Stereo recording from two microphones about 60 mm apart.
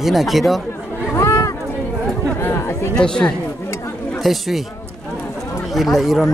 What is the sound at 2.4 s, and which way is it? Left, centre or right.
Speech, left.